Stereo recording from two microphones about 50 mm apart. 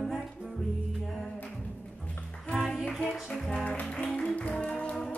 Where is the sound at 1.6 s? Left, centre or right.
Left.